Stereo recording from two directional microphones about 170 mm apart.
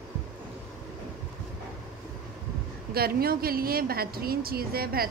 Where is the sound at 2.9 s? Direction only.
65° right (ahead or behind).